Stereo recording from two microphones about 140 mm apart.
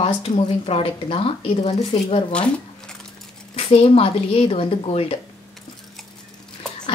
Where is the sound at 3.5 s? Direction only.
45° left (ahead or behind).